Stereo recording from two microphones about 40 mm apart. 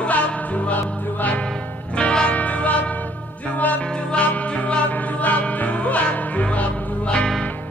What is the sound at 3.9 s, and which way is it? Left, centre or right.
Music, left.